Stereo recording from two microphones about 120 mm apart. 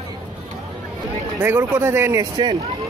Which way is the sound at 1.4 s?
20° right (ahead or behind).